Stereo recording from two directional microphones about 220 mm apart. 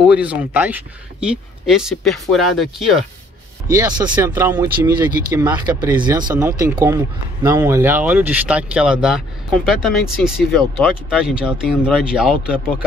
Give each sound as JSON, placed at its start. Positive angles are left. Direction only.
{"t": 0.0, "sound": "speech", "side_deg": -5}
{"t": 3.6, "sound": "speech", "side_deg": -20}